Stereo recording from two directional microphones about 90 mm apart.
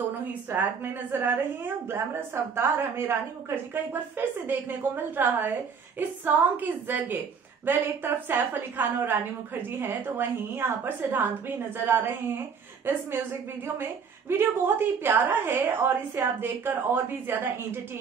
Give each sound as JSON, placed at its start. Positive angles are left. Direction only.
{"t": 0.5, "sound": "a woman's voice", "side_deg": -20}
{"t": 14.3, "sound": "a woman's voice", "side_deg": -25}